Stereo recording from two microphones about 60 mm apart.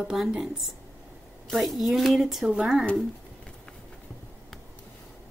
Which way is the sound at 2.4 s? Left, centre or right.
Centre.